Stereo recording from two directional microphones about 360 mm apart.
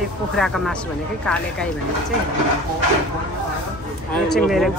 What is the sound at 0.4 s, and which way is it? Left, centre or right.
Speech, centre.